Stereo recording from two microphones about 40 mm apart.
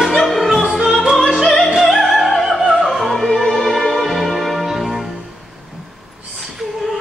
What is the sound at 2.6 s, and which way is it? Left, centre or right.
Opera, centre.